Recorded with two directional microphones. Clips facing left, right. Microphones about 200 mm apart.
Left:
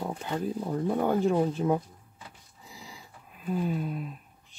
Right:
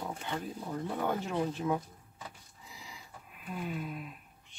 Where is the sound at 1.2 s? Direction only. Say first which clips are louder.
Left 8 dB; 35° left (ahead or behind).